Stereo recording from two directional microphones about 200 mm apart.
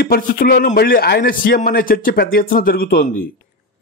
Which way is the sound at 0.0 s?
50° left (ahead or behind).